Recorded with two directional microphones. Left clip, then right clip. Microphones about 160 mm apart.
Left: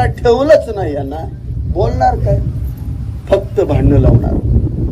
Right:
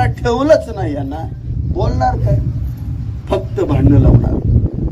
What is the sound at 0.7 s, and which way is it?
Speech, 40° right (ahead or behind).